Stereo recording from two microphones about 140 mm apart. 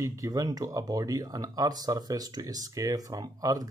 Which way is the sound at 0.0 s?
20° right (ahead or behind).